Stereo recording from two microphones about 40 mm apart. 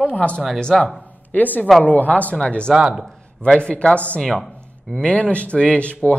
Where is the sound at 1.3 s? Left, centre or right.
Left.